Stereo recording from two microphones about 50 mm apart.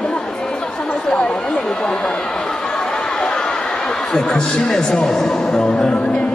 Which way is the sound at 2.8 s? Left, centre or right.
Centre.